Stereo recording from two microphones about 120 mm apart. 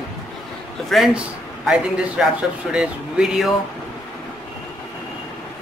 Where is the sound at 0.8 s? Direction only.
Centre (ahead or behind).